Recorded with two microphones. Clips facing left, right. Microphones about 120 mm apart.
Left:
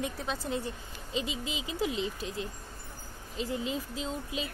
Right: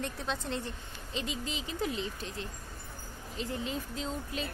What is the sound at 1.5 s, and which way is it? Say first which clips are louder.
Speech: left 1 dB; 40° right (ahead or behind).